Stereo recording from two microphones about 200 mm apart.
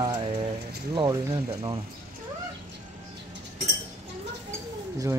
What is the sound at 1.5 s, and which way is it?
Speech, 30° right (ahead or behind).